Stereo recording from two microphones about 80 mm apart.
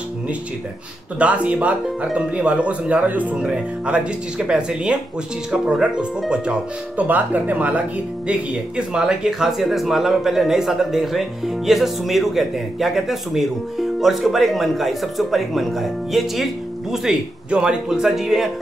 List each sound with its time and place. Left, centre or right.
1.2 s speech: centre